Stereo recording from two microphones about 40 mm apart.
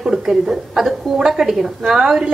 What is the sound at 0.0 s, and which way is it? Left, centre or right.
A woman's voice, centre.